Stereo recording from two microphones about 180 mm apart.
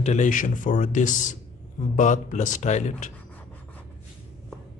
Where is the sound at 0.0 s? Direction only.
40° left (ahead or behind).